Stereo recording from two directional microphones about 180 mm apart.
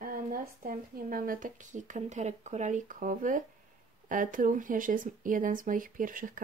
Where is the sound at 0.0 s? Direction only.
50° right (ahead or behind).